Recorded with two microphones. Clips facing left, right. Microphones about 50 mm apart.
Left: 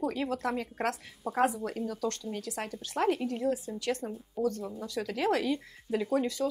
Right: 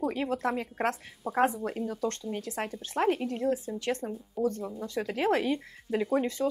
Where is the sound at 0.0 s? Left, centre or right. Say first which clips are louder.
Right 2 dB; centre.